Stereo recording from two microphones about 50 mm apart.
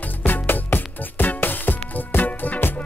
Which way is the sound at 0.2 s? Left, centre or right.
Left.